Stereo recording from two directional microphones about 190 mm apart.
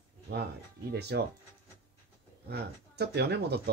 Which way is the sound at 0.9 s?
60° right (ahead or behind).